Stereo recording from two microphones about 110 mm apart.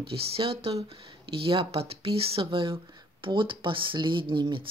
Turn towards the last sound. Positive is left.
turn(degrees=-45)  # may be behind; listen again after turning